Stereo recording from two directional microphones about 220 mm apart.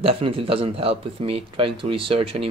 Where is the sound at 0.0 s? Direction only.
25° right (ahead or behind).